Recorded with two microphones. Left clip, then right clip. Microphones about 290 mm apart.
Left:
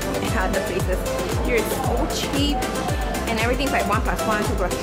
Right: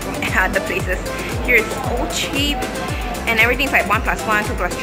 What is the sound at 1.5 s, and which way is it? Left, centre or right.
Speech, centre.